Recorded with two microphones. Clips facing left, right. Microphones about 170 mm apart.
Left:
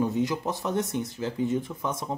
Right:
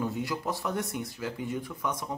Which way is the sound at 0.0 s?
20° left (ahead or behind).